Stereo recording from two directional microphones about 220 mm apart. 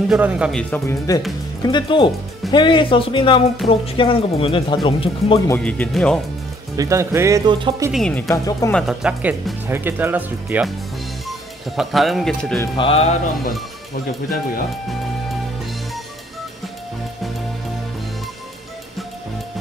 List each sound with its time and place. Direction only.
0.1 s speech: 5° right (ahead or behind); by 5.4 s 25° left (ahead or behind)
5.5 s speech: 5° left (ahead or behind)
6.8 s speech: 15° right (ahead or behind)
7.9 s speech: 5° left (ahead or behind)
8.7 s speech: centre (ahead or behind)
12.5 s speech: 25° left (ahead or behind)